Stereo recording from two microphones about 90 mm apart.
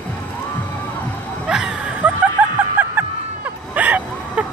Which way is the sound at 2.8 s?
20° right (ahead or behind).